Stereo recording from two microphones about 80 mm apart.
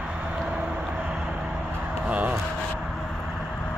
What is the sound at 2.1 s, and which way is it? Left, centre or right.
Speech, centre.